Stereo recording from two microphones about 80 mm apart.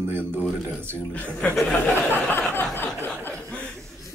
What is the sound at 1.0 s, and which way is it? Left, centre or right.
Speech, centre.